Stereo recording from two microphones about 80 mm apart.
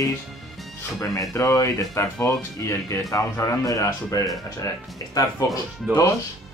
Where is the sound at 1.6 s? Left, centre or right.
Left.